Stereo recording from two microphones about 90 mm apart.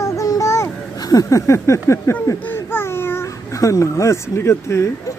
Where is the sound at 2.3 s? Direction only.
20° left (ahead or behind).